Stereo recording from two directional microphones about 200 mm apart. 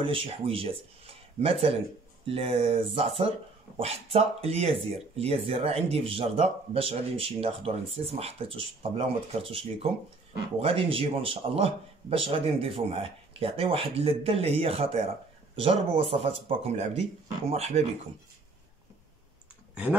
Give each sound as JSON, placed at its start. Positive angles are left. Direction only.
{"t": 0.0, "sound": "speech", "side_deg": -25}
{"t": 19.7, "sound": "speech", "side_deg": -5}